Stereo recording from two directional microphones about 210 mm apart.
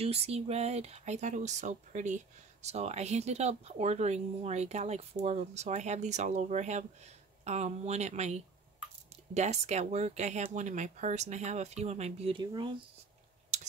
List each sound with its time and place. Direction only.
0.0 s speech: 30° right (ahead or behind)
13.5 s tick-tock: 35° right (ahead or behind)